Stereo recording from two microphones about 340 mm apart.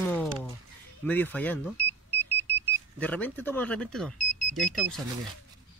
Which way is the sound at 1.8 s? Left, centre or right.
Centre.